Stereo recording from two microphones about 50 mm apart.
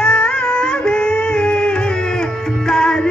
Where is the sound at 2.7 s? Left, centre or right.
Centre.